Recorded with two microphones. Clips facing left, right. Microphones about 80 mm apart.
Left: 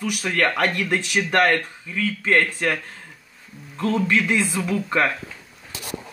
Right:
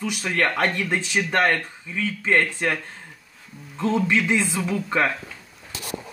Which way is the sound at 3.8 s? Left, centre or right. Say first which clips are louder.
Left 1 dB; centre.